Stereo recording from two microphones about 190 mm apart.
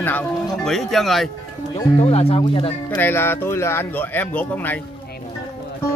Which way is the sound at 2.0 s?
30° left (ahead or behind).